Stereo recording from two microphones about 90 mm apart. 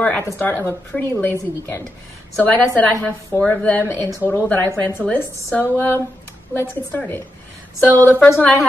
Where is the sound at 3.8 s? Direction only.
30° left (ahead or behind).